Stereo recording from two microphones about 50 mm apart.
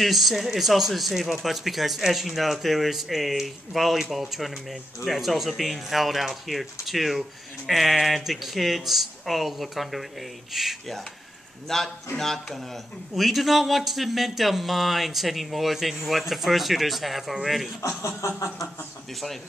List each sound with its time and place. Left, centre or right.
0.0 s a man's voice: centre
17.8 s speech: left